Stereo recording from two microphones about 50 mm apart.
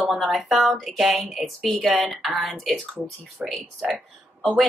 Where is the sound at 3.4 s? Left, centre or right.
Right.